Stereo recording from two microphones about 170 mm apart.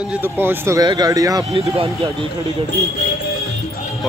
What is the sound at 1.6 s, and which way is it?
Speech, 35° right (ahead or behind).